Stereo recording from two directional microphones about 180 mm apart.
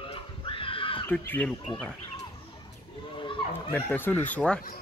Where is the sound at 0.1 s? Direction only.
30° left (ahead or behind).